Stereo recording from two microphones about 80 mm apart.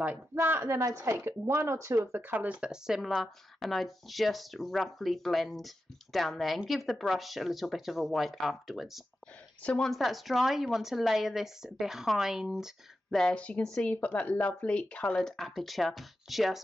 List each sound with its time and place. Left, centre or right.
0.3 s speech: right; by 9.0 s centre
9.6 s speech: centre
9.8 s speech: centre
13.2 s speech: centre